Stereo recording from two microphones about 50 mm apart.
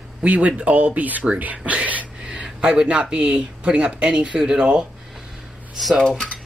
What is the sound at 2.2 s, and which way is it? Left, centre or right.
Speech, centre.